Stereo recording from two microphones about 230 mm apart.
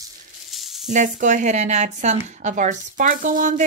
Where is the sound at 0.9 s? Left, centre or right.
Right.